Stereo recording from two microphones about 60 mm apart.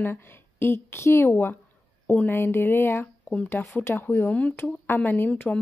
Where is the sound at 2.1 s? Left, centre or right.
Left.